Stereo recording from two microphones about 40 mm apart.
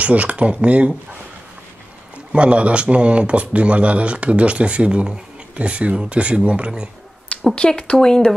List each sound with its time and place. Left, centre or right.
0.0 s speech: right
2.3 s speech: right
7.5 s speech: left
8.0 s speech: centre